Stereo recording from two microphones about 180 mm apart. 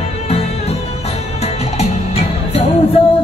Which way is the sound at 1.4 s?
35° left (ahead or behind).